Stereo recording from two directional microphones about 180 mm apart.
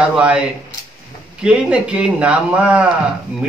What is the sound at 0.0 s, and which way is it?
Speech, 5° right (ahead or behind).